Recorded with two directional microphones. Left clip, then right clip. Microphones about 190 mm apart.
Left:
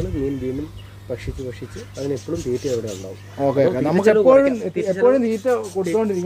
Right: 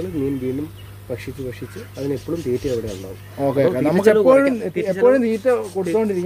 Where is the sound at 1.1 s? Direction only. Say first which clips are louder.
Right 1 dB; 20° right (ahead or behind).